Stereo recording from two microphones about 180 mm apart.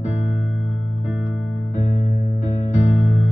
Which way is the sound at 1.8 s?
45° left (ahead or behind).